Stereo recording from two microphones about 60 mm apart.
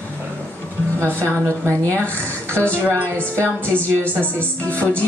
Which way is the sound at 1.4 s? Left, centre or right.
Right.